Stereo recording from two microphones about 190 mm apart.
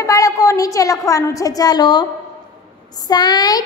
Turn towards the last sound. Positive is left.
turn(degrees=20)  # may be behind; listen again after turning